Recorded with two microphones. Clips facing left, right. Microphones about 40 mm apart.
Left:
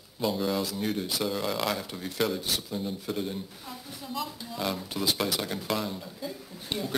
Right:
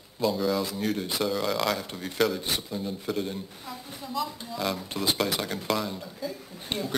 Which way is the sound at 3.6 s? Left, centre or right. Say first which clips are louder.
Right 2 dB; centre.